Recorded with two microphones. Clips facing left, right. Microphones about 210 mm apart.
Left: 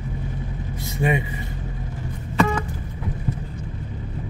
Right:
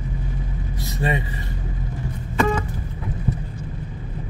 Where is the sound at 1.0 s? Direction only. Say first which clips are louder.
Left 2 dB; 15° left (ahead or behind).